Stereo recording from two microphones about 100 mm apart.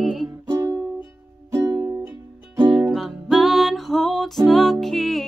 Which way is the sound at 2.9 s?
Centre (ahead or behind).